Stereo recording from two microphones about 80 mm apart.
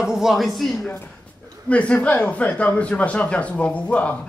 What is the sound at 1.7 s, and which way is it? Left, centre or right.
A man's voice, centre.